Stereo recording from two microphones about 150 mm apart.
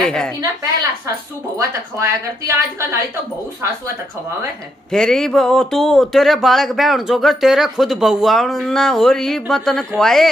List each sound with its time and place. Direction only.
0.0 s speech: 5° left (ahead or behind)
1.6 s speech: 20° right (ahead or behind)
4.9 s speech: 5° left (ahead or behind)